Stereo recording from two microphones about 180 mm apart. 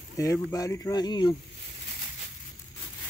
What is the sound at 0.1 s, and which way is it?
Speech, 20° left (ahead or behind).